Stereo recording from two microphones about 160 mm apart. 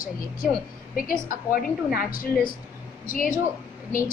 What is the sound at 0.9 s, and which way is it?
A woman's voice, 60° left (ahead or behind).